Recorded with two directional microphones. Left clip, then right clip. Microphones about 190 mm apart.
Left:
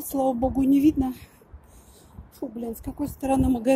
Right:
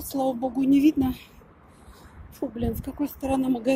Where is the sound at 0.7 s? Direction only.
15° left (ahead or behind).